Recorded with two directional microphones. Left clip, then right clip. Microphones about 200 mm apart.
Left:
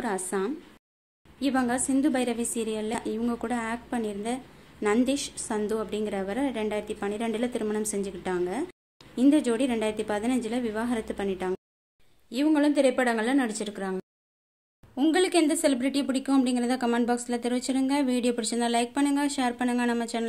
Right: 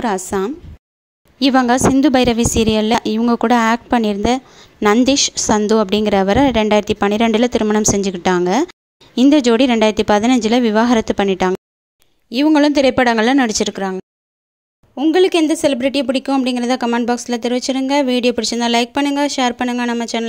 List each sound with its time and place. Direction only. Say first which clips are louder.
0.0 s a woman's voice: right 11 dB; 35° right (ahead or behind)